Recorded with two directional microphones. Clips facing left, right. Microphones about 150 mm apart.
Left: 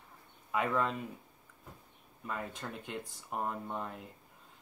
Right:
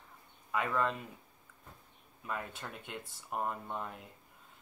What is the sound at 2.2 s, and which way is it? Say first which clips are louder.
Speech: left 1 dB; centre (ahead or behind).